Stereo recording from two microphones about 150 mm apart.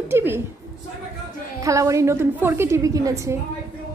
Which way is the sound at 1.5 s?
20° right (ahead or behind).